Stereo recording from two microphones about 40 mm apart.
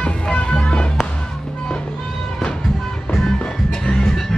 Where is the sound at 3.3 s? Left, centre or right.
Left.